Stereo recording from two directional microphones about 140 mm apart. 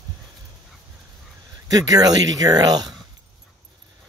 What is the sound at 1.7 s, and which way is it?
Speech, 25° right (ahead or behind).